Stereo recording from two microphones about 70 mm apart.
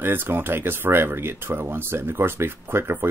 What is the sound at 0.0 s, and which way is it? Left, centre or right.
Speech, right.